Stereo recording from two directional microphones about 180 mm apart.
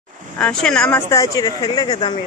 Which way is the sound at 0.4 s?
5° left (ahead or behind).